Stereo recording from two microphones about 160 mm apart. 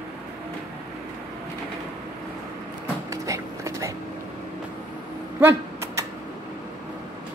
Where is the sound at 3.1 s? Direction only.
20° right (ahead or behind).